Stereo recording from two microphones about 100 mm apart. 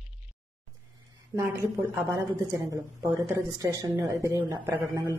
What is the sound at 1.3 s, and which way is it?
A woman's voice, 30° right (ahead or behind).